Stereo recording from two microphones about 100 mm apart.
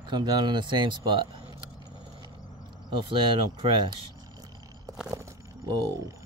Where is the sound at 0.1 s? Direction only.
45° right (ahead or behind).